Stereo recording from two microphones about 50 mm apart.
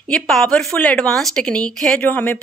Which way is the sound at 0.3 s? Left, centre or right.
Centre.